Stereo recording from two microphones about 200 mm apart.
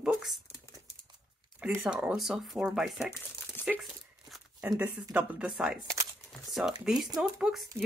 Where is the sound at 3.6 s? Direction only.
10° left (ahead or behind).